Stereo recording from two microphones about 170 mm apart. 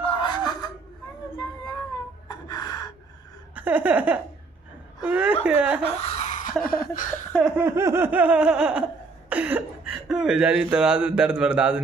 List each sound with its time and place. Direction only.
0.0 s a sound: 30° left (ahead or behind)
2.2 s gasp: 25° left (ahead or behind)
3.5 s snicker: 10° right (ahead or behind)
5.8 s a sound: 35° left (ahead or behind); by 7.2 s 55° left (ahead or behind)
7.5 s snicker: 15° right (ahead or behind)
9.3 s speech: 10° right (ahead or behind)